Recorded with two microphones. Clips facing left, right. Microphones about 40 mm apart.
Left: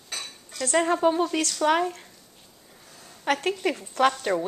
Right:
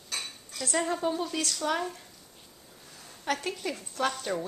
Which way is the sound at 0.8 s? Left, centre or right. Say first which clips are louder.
Left 8 dB; left.